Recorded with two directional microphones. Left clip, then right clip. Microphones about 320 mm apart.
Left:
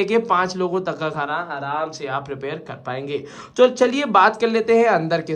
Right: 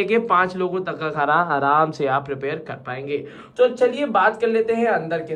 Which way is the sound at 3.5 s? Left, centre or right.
Left.